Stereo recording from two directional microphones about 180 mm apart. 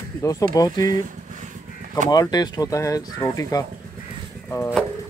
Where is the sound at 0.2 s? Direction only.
20° left (ahead or behind).